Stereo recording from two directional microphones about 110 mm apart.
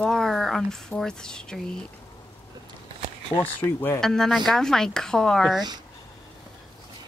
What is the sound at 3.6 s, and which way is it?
Speech, 20° left (ahead or behind).